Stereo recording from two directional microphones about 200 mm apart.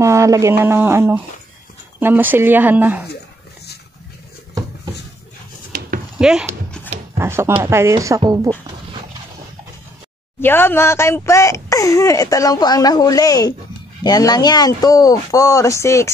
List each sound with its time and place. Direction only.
0.0 s speech: 15° right (ahead or behind)
5.7 s a sound: 45° right (ahead or behind)
6.1 s speech: 5° right (ahead or behind)
10.4 s speech: 10° left (ahead or behind)